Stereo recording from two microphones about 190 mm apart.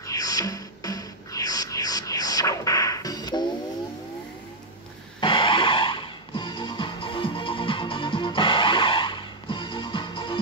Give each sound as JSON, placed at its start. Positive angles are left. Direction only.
{"t": 0.0, "sound": "music", "side_deg": 20}
{"t": 5.2, "sound": "music", "side_deg": 25}